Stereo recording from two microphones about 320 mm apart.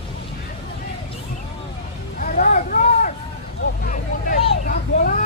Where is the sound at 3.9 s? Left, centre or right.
Left.